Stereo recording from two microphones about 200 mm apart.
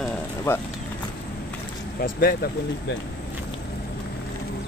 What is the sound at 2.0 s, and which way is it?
Speech, 50° left (ahead or behind).